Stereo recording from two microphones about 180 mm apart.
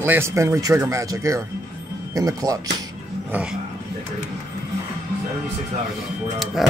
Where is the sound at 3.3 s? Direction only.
5° right (ahead or behind).